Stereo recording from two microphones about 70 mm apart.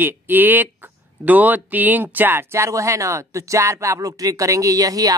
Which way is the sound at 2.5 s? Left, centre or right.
Right.